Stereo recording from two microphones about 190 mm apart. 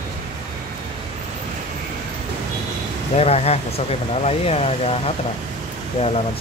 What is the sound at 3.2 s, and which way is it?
Speech, 30° left (ahead or behind).